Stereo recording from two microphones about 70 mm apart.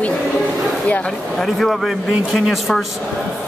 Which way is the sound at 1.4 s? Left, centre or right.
Centre.